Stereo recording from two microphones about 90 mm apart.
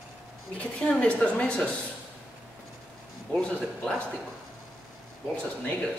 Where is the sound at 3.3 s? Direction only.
10° left (ahead or behind).